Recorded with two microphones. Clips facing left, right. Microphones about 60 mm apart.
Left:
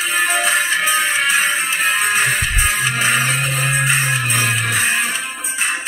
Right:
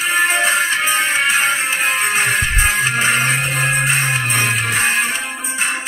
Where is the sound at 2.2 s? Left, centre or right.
Right.